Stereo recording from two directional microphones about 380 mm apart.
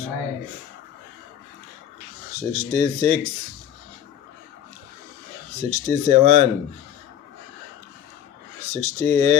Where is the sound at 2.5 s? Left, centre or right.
Centre.